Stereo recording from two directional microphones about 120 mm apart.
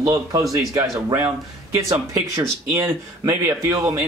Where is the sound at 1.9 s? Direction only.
30° right (ahead or behind).